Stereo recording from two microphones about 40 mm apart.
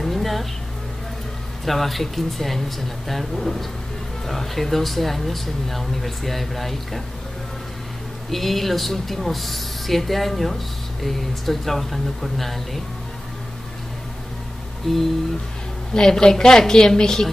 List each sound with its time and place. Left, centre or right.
0.0 s a sound: centre
1.6 s speech: centre
8.3 s speech: centre
14.8 s a woman's voice: centre